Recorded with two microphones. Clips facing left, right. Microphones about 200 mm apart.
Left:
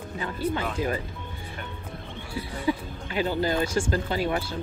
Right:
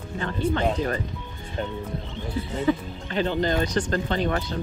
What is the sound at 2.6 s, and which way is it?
Speech, 10° left (ahead or behind).